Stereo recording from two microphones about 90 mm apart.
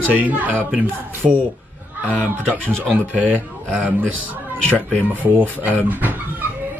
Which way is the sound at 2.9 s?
15° right (ahead or behind).